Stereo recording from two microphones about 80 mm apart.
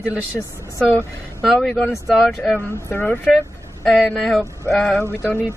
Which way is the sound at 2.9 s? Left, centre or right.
Left.